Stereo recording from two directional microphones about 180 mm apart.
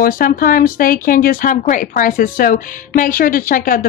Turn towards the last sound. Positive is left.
turn(degrees=50)  # may be behind; listen again after turning